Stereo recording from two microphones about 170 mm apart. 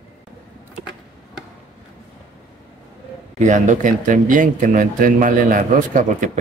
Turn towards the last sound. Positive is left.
turn(degrees=-50)  # may be behind; listen again after turning